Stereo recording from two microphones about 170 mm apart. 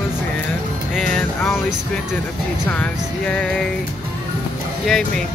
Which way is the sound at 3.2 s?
10° left (ahead or behind).